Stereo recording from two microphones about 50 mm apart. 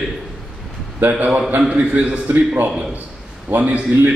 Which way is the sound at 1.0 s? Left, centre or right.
Right.